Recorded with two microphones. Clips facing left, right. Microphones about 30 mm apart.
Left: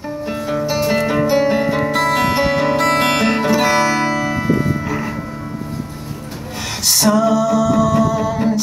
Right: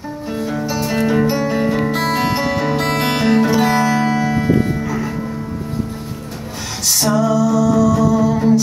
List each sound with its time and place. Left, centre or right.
0.4 s music: centre
1.3 s music: left
3.6 s music: left
6.9 s music: left